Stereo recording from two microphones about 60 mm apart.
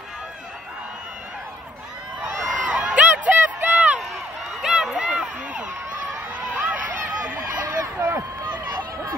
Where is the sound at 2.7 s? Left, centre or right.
Centre.